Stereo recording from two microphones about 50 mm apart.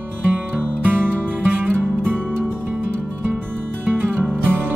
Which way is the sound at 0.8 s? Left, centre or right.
Right.